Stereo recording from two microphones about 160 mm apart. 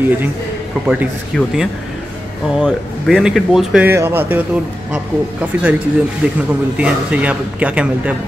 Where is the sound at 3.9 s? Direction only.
15° right (ahead or behind).